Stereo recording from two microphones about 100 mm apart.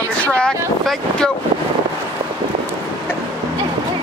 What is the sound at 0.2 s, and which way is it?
Speech, 10° left (ahead or behind).